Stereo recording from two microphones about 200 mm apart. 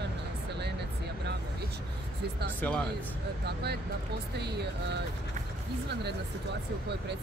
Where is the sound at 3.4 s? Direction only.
55° right (ahead or behind).